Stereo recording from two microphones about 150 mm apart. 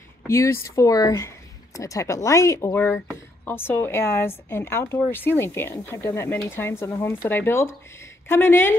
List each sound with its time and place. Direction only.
0.3 s a woman's voice: 20° left (ahead or behind)